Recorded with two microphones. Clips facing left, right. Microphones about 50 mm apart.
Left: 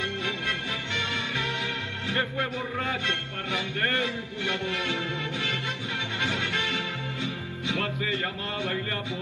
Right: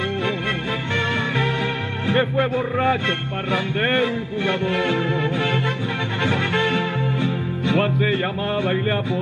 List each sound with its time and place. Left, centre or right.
0.9 s music: centre
2.0 s a man's voice: centre
6.2 s music: centre